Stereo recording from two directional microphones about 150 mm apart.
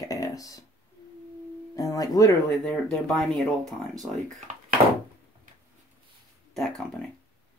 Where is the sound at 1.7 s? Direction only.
25° left (ahead or behind).